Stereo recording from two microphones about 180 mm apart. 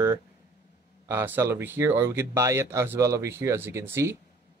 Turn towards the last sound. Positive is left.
turn(degrees=-15)  # may be behind; listen again after turning